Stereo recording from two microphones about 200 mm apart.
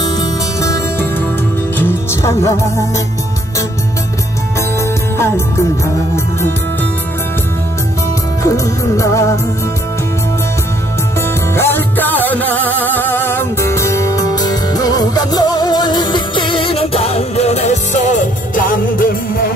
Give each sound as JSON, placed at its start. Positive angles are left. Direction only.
{"t": 0.0, "sound": "music", "side_deg": 15}
{"t": 5.1, "sound": "music", "side_deg": 10}
{"t": 8.5, "sound": "music", "side_deg": 15}
{"t": 11.1, "sound": "music", "side_deg": 10}